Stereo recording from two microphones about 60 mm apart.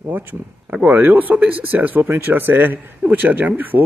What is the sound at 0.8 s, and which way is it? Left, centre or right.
Speech, right.